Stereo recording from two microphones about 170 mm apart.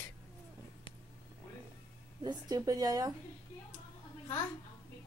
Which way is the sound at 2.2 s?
20° right (ahead or behind).